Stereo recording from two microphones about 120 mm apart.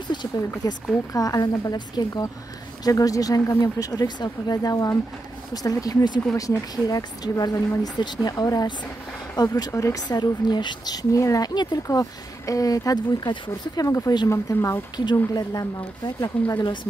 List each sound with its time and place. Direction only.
0.6 s speech: 30° left (ahead or behind)
16.3 s speech: 10° left (ahead or behind)